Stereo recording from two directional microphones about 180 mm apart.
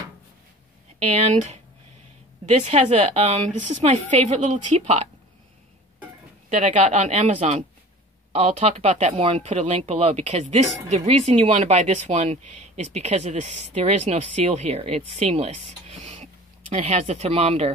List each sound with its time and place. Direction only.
0.9 s speech: 35° right (ahead or behind)
6.5 s speech: 40° right (ahead or behind)